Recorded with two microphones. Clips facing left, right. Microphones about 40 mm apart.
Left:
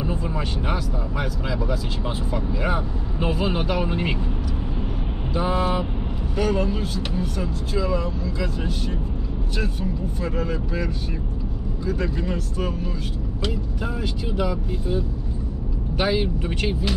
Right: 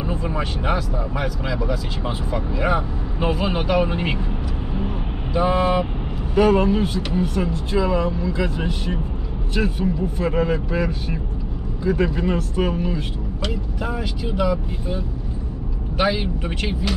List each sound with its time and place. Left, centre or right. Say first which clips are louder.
0.0 s vehicle: right 2 dB; centre
0.7 s speech: right 3 dB; centre
2.3 s speech: right 4 dB; centre
5.4 s speech: right 4 dB; centre
14.3 s speech: right 4 dB; centre
16.0 s speech: right 2 dB; centre